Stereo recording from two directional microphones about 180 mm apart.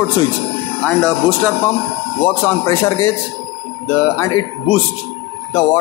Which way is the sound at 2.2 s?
15° left (ahead or behind).